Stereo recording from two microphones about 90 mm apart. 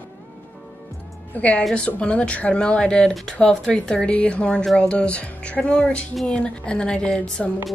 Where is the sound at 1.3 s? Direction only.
15° left (ahead or behind).